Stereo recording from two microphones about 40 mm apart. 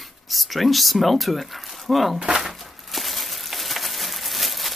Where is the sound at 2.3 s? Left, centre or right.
Centre.